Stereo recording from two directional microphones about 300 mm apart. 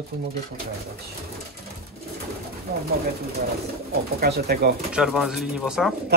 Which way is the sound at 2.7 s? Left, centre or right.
Right.